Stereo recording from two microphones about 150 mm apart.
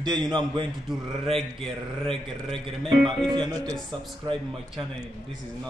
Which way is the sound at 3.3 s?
25° right (ahead or behind).